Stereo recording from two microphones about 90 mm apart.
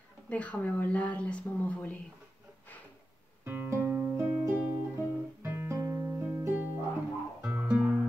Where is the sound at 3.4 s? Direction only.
25° right (ahead or behind).